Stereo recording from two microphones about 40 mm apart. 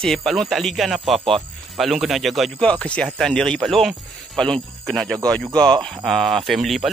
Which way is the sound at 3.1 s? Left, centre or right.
Centre.